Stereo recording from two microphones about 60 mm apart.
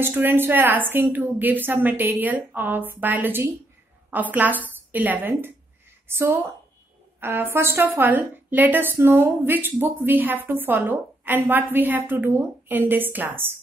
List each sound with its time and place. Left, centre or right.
0.0 s a woman's voice: right